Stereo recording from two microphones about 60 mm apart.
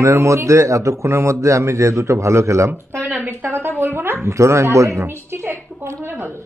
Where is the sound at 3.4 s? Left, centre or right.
Right.